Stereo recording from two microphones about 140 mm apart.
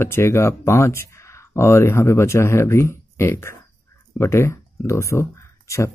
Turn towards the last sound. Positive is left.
turn(degrees=20)  # may be behind; listen again after turning